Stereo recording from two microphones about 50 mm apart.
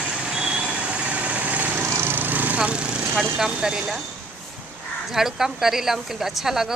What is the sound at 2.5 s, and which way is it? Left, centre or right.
Lawn mower, right.